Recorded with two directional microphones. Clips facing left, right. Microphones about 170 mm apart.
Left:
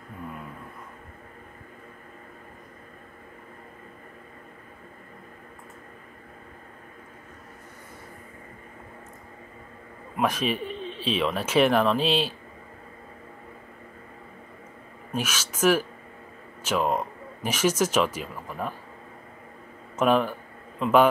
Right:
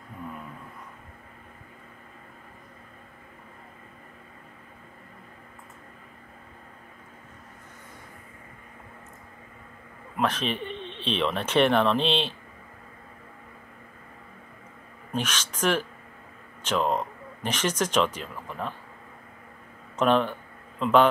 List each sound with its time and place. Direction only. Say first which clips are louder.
10.1 s speech: left 2 dB; 10° left (ahead or behind)
15.1 s speech: left 1 dB; 10° left (ahead or behind)
20.0 s speech: left 1 dB; 5° left (ahead or behind)